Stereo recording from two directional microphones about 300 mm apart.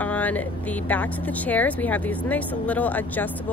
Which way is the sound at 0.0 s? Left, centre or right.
Centre.